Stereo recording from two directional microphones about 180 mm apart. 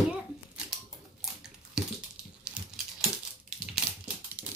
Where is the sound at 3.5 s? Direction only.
5° right (ahead or behind).